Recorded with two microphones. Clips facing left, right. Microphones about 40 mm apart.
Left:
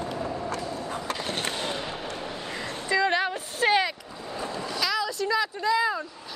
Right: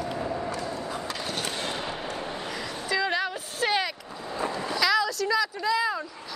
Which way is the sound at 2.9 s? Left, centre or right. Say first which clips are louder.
Left 3 dB; left.